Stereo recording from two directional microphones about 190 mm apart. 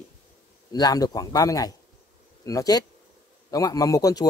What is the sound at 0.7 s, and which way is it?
Speech, 20° left (ahead or behind).